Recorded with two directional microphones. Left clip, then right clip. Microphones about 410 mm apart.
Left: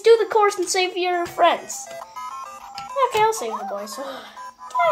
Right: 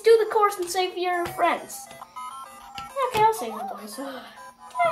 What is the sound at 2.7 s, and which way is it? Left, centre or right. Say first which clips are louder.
Music: left 4 dB; centre.